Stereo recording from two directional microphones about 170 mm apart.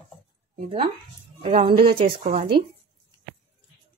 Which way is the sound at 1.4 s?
35° right (ahead or behind).